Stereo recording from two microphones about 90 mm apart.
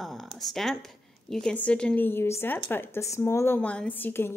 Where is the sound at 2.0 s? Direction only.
25° left (ahead or behind).